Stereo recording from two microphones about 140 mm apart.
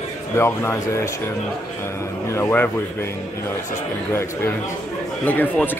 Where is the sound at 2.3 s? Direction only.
15° left (ahead or behind).